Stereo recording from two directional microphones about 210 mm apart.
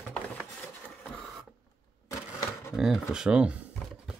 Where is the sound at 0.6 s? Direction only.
5° left (ahead or behind).